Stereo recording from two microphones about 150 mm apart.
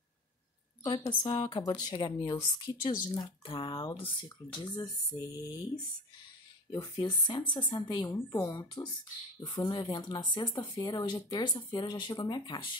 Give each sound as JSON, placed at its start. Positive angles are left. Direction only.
{"t": 0.8, "sound": "speech", "side_deg": 30}
{"t": 6.7, "sound": "speech", "side_deg": 25}